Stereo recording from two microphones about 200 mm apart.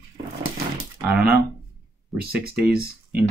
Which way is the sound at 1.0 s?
50° right (ahead or behind).